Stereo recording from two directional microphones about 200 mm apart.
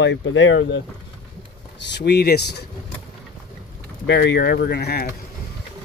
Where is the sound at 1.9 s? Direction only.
55° left (ahead or behind).